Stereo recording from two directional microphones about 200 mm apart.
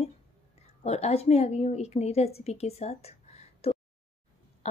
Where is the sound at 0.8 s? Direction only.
35° left (ahead or behind).